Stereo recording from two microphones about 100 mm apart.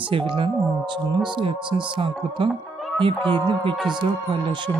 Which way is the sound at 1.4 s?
60° right (ahead or behind).